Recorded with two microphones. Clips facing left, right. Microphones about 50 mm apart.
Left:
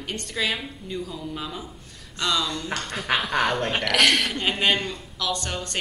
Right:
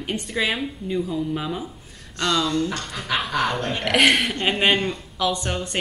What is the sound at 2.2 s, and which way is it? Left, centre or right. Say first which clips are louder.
Speech: right 3 dB; centre.